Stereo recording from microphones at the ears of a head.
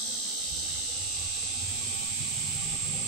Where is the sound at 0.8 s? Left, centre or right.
Left.